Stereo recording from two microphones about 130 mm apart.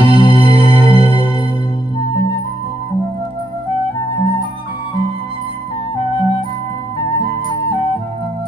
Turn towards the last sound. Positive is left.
turn(degrees=30)  # may be behind; listen again after turning